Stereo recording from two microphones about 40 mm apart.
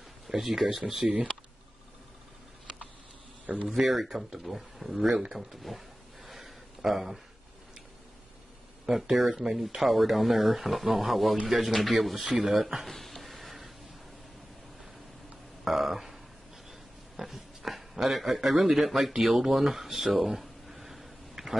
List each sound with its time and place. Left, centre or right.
0.3 s speech: centre
3.6 s speech: centre
6.2 s a sound: centre
8.8 s speech: centre
12.2 s speech: centre
12.8 s a sound: centre
15.6 s burping: centre
17.2 s a sound: centre
18.0 s a man's voice: centre